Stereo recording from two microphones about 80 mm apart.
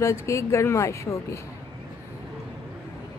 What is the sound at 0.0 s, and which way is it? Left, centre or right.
Speech, left.